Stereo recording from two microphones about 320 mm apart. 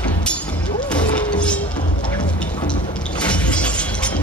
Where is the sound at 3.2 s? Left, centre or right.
Centre.